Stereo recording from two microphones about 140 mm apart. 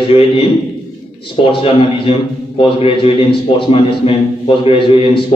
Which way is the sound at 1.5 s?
40° left (ahead or behind).